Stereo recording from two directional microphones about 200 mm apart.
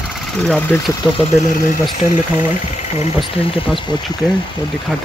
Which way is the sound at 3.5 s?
25° left (ahead or behind).